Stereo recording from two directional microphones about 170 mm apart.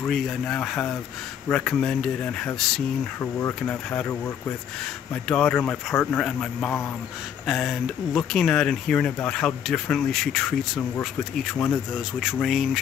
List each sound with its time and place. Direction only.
0.0 s speech: 5° left (ahead or behind)
3.2 s speech: 15° left (ahead or behind)
5.1 s speech: 5° left (ahead or behind)